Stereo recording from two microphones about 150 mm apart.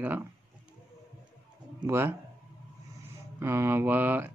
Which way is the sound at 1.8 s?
15° right (ahead or behind).